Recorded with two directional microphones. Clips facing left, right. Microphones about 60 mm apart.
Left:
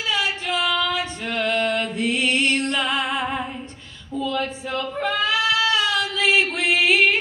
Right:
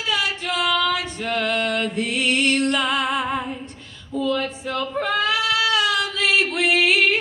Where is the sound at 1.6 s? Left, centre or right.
Centre.